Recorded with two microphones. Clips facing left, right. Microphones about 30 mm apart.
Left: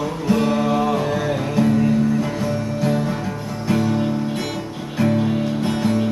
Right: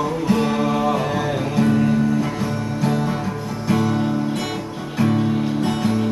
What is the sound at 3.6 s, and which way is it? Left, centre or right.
Music, centre.